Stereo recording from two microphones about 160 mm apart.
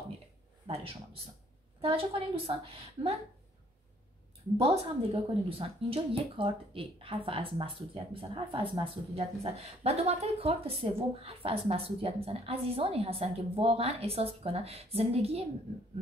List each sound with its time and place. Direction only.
0.7 s a woman's voice: 35° right (ahead or behind)
4.6 s a woman's voice: 35° right (ahead or behind)